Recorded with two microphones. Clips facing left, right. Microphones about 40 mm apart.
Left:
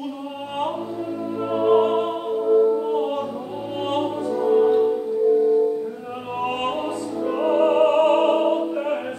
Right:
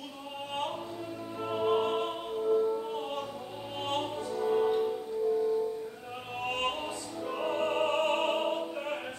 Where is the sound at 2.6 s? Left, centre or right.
Left.